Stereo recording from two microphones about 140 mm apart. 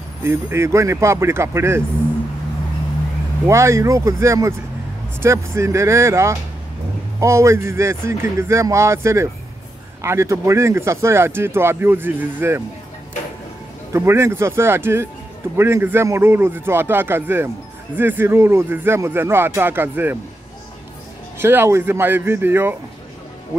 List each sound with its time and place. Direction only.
0.2 s speech: 20° right (ahead or behind)
3.4 s speech: 20° right (ahead or behind)
13.9 s speech: 20° right (ahead or behind)
21.4 s speech: 15° right (ahead or behind)